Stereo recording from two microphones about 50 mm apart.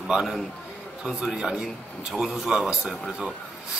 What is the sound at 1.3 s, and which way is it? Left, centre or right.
A man's voice, centre.